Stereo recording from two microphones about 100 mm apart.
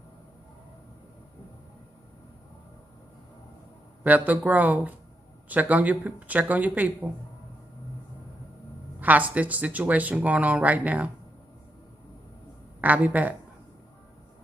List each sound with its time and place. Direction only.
4.0 s speech: 15° right (ahead or behind)
9.0 s speech: 15° right (ahead or behind)
12.8 s speech: 15° right (ahead or behind)